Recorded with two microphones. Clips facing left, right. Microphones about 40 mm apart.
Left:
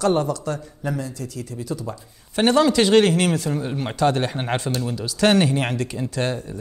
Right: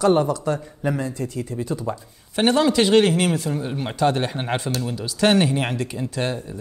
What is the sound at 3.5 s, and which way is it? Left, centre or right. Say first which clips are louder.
Speech: left 1 dB; centre.